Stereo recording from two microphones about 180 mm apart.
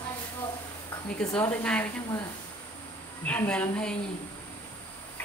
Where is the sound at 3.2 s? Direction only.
10° left (ahead or behind).